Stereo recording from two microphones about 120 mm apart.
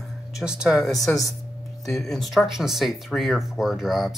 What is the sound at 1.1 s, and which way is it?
Speech, 10° left (ahead or behind).